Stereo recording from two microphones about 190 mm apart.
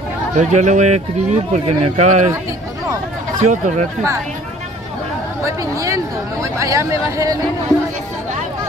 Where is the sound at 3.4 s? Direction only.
40° right (ahead or behind).